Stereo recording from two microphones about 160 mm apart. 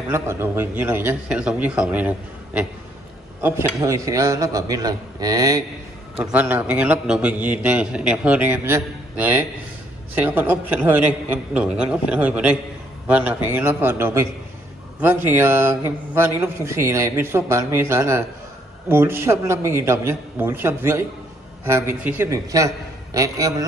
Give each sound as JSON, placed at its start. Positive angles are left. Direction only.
{"t": 0.1, "sound": "a man's voice", "side_deg": -15}
{"t": 6.3, "sound": "a man's voice", "side_deg": -10}